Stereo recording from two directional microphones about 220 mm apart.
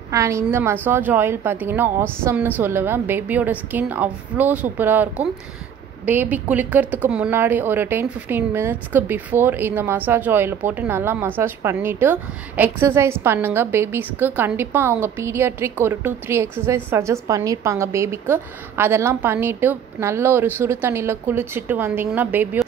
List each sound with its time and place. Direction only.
0.1 s a woman's voice: 15° right (ahead or behind)